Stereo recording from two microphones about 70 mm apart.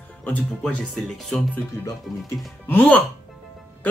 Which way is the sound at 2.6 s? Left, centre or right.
Left.